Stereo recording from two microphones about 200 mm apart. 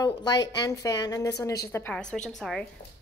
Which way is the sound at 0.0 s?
20° left (ahead or behind).